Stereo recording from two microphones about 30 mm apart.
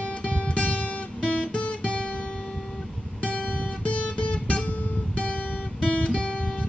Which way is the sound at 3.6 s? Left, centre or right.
Left.